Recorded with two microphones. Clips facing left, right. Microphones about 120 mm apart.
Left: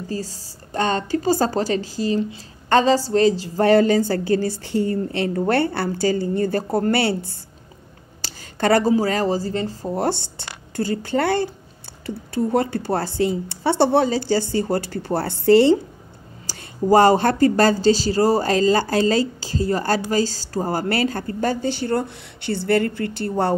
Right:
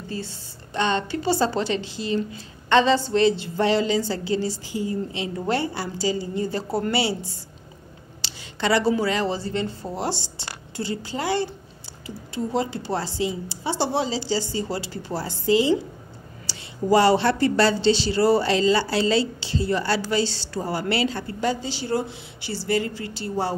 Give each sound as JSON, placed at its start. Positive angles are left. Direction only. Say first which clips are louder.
{"t": 0.1, "sound": "a woman's voice", "louder": "left 2 dB", "side_deg": 40}
{"t": 8.2, "sound": "a woman's voice", "louder": "left 5 dB", "side_deg": 50}
{"t": 9.9, "sound": "speech", "louder": "left 7 dB", "side_deg": 55}
{"t": 16.4, "sound": "speech", "louder": "left 3 dB", "side_deg": 45}